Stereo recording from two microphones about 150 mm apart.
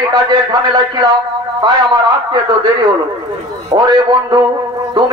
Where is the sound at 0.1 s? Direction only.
30° right (ahead or behind).